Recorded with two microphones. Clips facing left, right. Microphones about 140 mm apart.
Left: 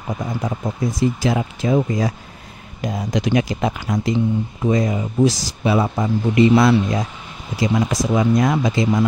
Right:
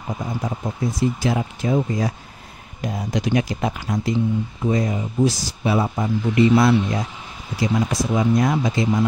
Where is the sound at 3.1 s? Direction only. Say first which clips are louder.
Left 2 dB; 90° left.